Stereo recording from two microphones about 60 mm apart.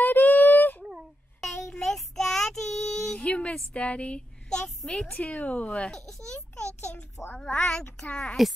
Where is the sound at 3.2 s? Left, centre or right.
Centre.